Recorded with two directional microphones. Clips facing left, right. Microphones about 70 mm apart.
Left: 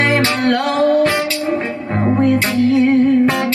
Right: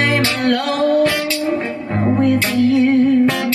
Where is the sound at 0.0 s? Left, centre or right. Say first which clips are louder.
Left 2 dB; left.